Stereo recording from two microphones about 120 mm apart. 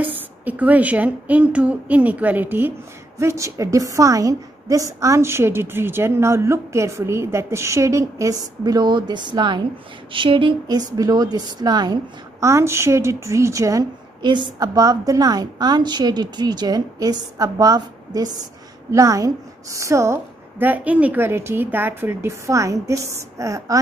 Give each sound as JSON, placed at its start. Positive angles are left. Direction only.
{"t": 0.5, "sound": "a woman's voice", "side_deg": -10}
{"t": 14.2, "sound": "a woman's voice", "side_deg": -40}